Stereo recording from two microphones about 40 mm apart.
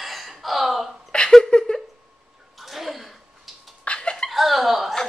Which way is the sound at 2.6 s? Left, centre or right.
Centre.